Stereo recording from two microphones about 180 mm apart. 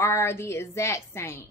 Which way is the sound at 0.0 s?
15° left (ahead or behind).